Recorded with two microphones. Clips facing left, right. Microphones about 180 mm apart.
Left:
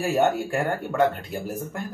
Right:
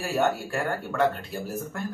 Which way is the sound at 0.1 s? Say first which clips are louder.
Left 2 dB; 20° left (ahead or behind).